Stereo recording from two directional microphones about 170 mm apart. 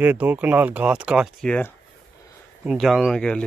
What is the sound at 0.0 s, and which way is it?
Speech, 10° right (ahead or behind).